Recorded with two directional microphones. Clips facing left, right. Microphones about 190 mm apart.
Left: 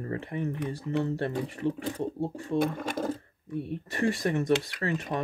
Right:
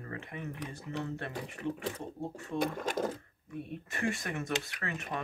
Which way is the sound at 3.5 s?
35° left (ahead or behind).